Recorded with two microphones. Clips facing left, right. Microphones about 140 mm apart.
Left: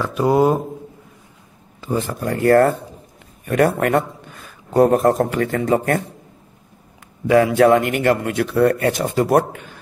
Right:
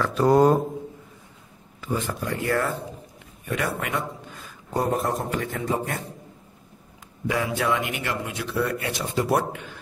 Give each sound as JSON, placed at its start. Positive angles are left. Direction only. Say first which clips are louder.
{"t": 0.0, "sound": "speech", "louder": "left 2 dB", "side_deg": 10}
{"t": 1.8, "sound": "a sound", "louder": "left 6 dB", "side_deg": 35}
{"t": 2.2, "sound": "a man's voice", "louder": "left 13 dB", "side_deg": 55}
{"t": 4.7, "sound": "a man's voice", "louder": "left 11 dB", "side_deg": 70}
{"t": 7.2, "sound": "a man's voice", "louder": "left 12 dB", "side_deg": 65}